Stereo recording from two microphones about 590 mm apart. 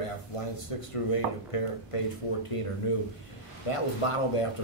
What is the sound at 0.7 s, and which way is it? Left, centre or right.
Speech, left.